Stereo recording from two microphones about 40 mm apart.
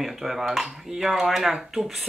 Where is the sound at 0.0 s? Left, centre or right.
Centre.